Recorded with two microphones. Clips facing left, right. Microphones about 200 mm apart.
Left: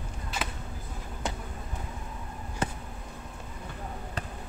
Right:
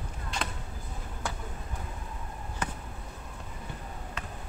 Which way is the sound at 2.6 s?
25° left (ahead or behind).